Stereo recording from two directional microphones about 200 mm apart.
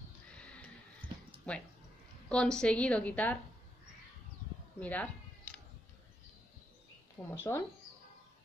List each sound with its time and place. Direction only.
0.4 s horse: 5° left (ahead or behind)
1.5 s a woman's voice: 5° left (ahead or behind)
4.7 s a woman's voice: 5° left (ahead or behind)
7.2 s a woman's voice: 10° left (ahead or behind)